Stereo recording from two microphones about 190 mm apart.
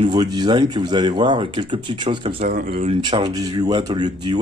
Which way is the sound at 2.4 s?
50° right (ahead or behind).